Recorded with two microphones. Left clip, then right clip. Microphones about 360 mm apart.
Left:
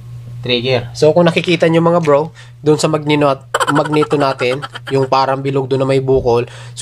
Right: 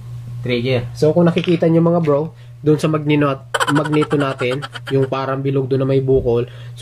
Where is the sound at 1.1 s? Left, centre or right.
Left.